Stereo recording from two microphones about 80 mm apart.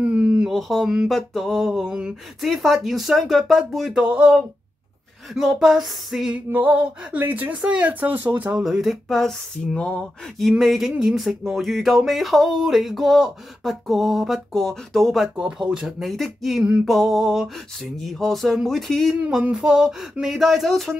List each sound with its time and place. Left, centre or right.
0.0 s a sound: centre
0.5 s a sound: centre
1.0 s speech: centre
2.4 s speech: centre
4.0 s speech: centre
5.3 s speech: centre
6.3 s a sound: right
8.5 s speech: centre
9.8 s speech: centre
10.6 s speech: centre
19.2 s speech: centre